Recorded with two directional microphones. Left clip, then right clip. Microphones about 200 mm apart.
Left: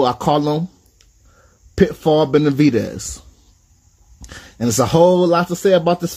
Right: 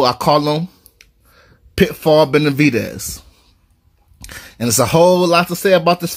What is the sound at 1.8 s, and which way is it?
Speech, 25° right (ahead or behind).